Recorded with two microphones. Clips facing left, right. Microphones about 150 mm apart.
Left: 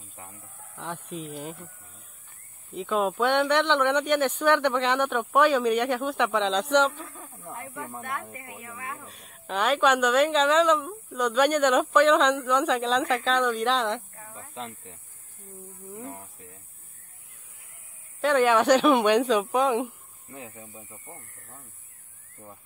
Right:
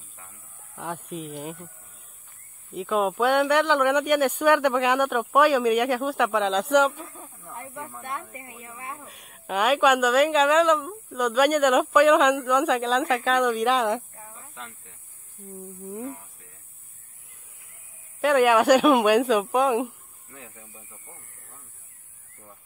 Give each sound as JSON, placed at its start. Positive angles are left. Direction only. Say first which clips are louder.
{"t": 0.7, "sound": "speech", "louder": "right 2 dB", "side_deg": -10}
{"t": 2.7, "sound": "speech", "louder": "right 2 dB", "side_deg": 0}
{"t": 7.5, "sound": "snake", "louder": "right 1 dB", "side_deg": -20}
{"t": 8.6, "sound": "a sound", "louder": "even", "side_deg": -25}
{"t": 8.9, "sound": "speech", "louder": "even", "side_deg": -10}
{"t": 14.3, "sound": "snake", "louder": "left 8 dB", "side_deg": 25}
{"t": 18.2, "sound": "speech", "louder": "right 2 dB", "side_deg": -10}
{"t": 20.5, "sound": "speech", "louder": "left 4 dB", "side_deg": 25}
{"t": 20.9, "sound": "snake", "louder": "left 4 dB", "side_deg": 15}